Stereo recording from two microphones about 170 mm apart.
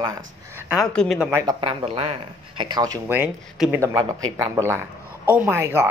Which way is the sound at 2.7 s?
20° right (ahead or behind).